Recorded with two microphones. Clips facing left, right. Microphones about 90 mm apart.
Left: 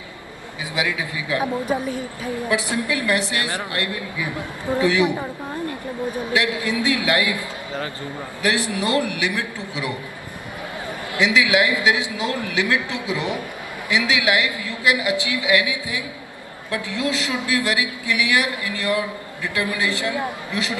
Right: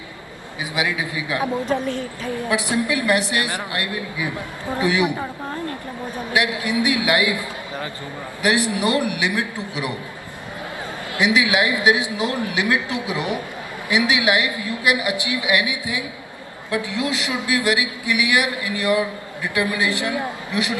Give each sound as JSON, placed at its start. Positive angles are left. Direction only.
{"t": 0.6, "sound": "a man's voice", "side_deg": -20}
{"t": 1.7, "sound": "a woman's voice", "side_deg": 10}
{"t": 2.5, "sound": "a man's voice", "side_deg": -20}
{"t": 6.3, "sound": "a man's voice", "side_deg": -20}
{"t": 11.1, "sound": "a man's voice", "side_deg": -20}